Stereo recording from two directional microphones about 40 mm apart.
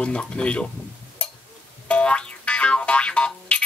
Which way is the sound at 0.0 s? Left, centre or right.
Left.